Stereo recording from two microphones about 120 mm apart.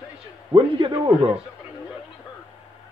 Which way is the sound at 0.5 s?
45° right (ahead or behind).